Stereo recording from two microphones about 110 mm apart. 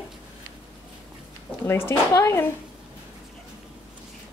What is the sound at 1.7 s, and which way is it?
Speech, 25° left (ahead or behind).